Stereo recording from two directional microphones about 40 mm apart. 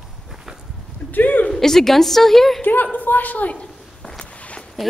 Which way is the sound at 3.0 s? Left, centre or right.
Left.